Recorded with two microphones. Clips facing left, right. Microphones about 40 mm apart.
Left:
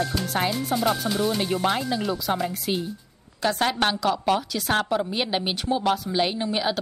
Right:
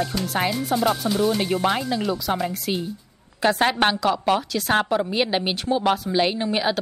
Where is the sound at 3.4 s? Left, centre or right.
Right.